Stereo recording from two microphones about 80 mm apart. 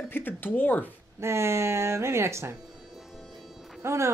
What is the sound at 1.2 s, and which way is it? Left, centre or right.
Speech, right.